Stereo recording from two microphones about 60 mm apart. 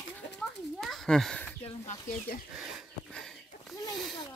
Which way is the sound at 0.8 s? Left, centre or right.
Centre.